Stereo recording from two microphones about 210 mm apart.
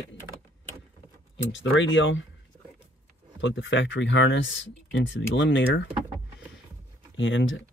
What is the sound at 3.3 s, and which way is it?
Speech, 60° left (ahead or behind).